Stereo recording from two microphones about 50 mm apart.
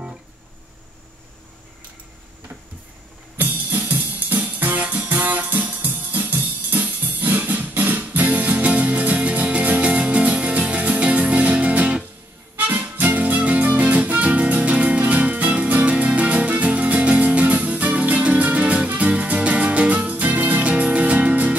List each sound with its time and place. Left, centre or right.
3.3 s music: right